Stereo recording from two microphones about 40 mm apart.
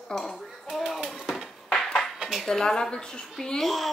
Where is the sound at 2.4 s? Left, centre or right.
Centre.